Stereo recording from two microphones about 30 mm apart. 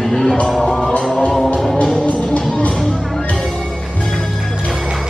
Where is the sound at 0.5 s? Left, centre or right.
Centre.